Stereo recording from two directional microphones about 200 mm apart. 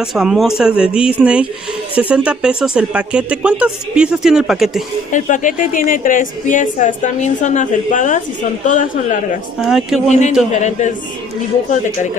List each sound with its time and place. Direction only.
0.0 s speech: centre (ahead or behind)
5.1 s a woman's voice: 40° left (ahead or behind)
9.6 s speech: centre (ahead or behind)
10.0 s a woman's voice: 35° left (ahead or behind)